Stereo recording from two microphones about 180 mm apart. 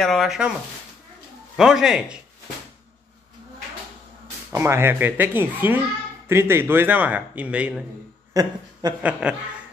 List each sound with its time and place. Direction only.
0.0 s speech: centre (ahead or behind)
1.6 s speech: 5° right (ahead or behind)
4.5 s speech: 15° right (ahead or behind)
8.3 s speech: 20° right (ahead or behind)
9.2 s speech: 5° right (ahead or behind)